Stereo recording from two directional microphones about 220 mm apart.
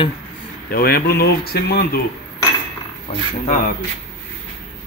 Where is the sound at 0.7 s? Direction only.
45° left (ahead or behind).